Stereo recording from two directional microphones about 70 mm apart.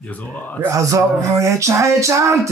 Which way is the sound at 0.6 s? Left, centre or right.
Right.